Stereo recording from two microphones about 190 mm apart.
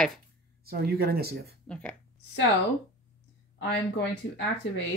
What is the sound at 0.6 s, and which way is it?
Speech, 55° right (ahead or behind).